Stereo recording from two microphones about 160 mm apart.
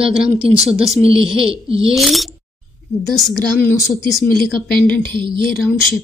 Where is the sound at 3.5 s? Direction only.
15° left (ahead or behind).